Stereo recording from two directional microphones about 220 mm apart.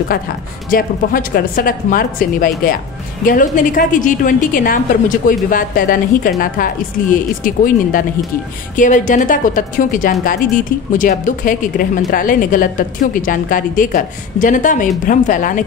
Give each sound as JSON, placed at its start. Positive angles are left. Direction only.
{"t": 0.1, "sound": "a woman's voice", "side_deg": 45}